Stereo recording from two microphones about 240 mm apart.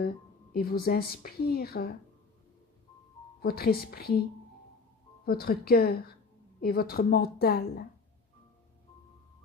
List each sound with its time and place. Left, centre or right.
0.0 s speech: left
3.4 s speech: left
5.2 s speech: left